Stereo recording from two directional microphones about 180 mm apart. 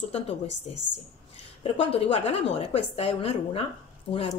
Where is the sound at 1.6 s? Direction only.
35° left (ahead or behind).